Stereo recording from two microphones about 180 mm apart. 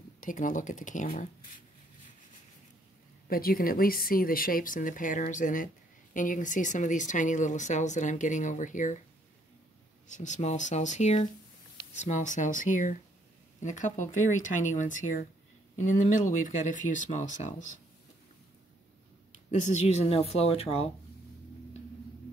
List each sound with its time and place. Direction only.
0.2 s speech: 45° left (ahead or behind)
3.3 s speech: 55° left (ahead or behind)
10.0 s a woman's voice: 40° left (ahead or behind)
19.5 s a woman's voice: 40° left (ahead or behind)